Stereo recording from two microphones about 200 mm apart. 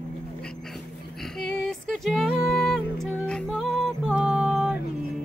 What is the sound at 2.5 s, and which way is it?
Music, centre (ahead or behind).